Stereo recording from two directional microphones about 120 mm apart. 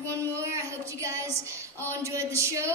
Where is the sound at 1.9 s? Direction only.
25° right (ahead or behind).